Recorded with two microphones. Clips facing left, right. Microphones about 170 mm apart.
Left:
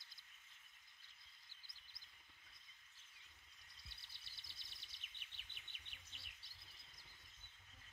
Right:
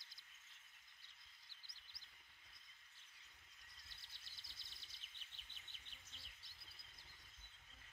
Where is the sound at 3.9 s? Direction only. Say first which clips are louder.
Even; 65° left (ahead or behind).